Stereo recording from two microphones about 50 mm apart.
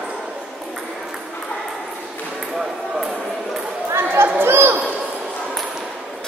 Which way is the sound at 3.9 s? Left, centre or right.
Right.